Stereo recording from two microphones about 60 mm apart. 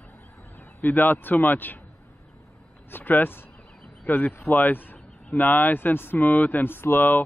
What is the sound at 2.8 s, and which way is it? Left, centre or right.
Speech, left.